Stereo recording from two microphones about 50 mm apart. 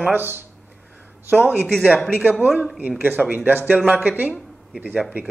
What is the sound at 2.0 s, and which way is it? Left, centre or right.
Speech, centre.